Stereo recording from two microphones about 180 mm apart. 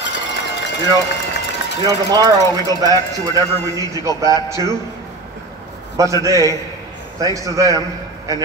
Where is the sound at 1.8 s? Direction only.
20° right (ahead or behind).